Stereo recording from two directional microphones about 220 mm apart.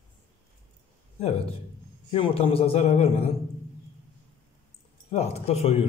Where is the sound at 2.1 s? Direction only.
25° left (ahead or behind).